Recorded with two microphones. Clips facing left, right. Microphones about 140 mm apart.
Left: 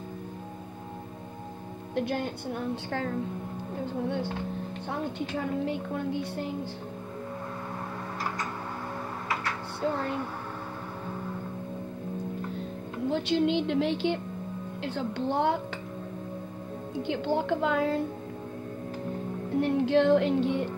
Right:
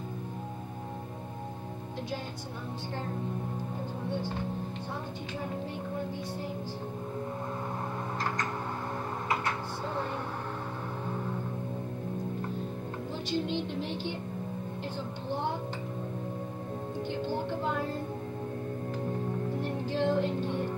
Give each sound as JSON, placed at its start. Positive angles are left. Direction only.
{"t": 2.0, "sound": "a woman's voice", "side_deg": 60}
{"t": 5.3, "sound": "a woman's voice", "side_deg": 75}
{"t": 13.1, "sound": "a woman's voice", "side_deg": 75}
{"t": 17.1, "sound": "a woman's voice", "side_deg": 85}
{"t": 19.6, "sound": "a woman's voice", "side_deg": 75}